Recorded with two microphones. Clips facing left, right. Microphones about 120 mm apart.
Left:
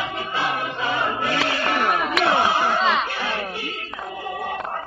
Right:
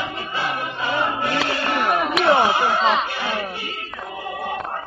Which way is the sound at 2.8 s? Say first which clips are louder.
Right 2 dB; centre (ahead or behind).